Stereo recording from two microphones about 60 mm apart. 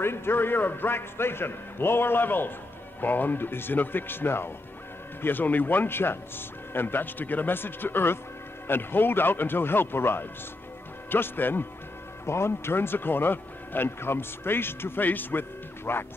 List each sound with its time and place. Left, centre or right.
0.0 s speech: left
12.3 s speech: left